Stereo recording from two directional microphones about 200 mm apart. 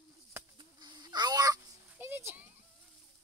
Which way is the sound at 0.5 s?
20° right (ahead or behind).